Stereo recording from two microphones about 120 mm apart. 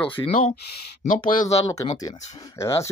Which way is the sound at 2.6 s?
25° left (ahead or behind).